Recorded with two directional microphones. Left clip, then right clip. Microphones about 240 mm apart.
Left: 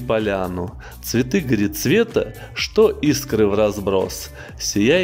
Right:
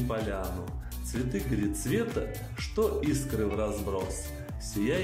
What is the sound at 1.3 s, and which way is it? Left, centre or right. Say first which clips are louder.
Speech: left 12 dB; left.